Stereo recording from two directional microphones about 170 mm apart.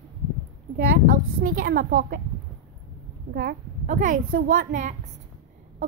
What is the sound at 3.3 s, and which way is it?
Speech, 65° right (ahead or behind).